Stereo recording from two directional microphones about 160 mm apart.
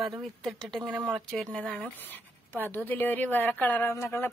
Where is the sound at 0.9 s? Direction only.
10° right (ahead or behind).